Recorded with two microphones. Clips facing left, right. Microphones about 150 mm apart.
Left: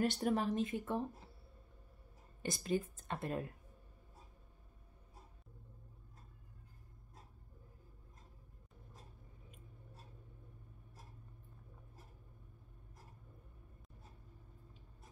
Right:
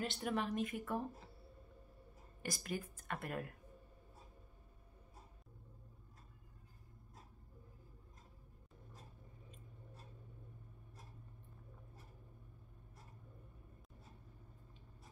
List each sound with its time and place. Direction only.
0.0 s speech: 40° left (ahead or behind)
2.4 s speech: 25° left (ahead or behind)